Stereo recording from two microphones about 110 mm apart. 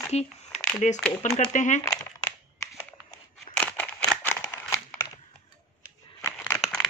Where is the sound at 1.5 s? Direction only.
90° left.